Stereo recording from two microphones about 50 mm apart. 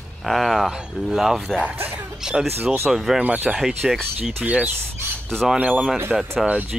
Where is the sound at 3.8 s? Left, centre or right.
Centre.